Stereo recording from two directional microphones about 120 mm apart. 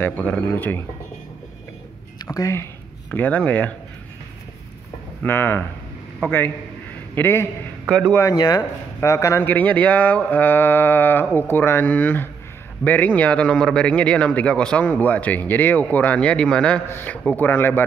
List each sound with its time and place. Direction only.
0.0 s a man's voice: 15° left (ahead or behind)
2.3 s speech: 25° left (ahead or behind)
5.2 s a man's voice: 20° left (ahead or behind)
7.2 s a man's voice: 20° left (ahead or behind)
8.4 s speech: 30° left (ahead or behind)
9.5 s a man's voice: 15° left (ahead or behind)